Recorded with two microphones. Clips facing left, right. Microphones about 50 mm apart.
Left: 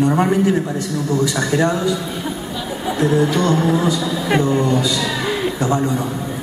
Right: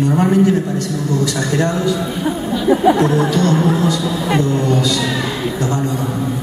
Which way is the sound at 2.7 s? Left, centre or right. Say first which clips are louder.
Right 9 dB; right.